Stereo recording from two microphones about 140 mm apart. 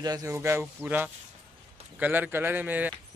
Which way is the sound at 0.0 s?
25° right (ahead or behind).